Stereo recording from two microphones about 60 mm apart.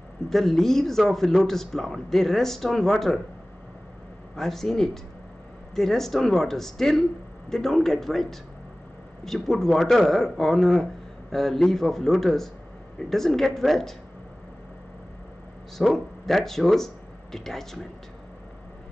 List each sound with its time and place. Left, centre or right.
0.3 s speech: centre
4.4 s speech: centre
15.8 s speech: centre